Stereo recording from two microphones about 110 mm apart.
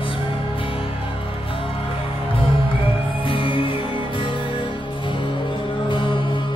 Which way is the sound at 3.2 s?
50° left (ahead or behind).